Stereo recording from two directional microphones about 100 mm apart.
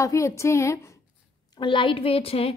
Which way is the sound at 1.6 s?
55° left (ahead or behind).